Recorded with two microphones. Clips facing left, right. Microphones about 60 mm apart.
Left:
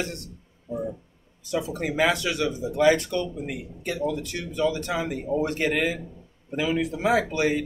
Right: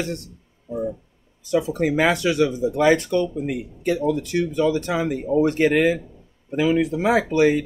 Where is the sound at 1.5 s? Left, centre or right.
Right.